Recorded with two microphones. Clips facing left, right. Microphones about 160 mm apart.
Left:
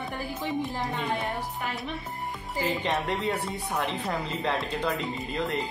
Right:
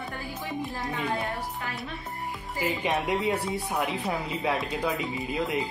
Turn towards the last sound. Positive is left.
turn(degrees=-5)  # may be behind; listen again after turning